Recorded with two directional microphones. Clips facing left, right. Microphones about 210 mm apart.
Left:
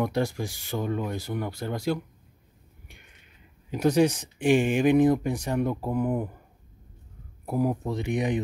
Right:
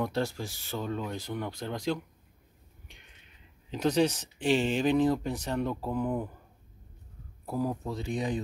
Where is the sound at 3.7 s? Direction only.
10° left (ahead or behind).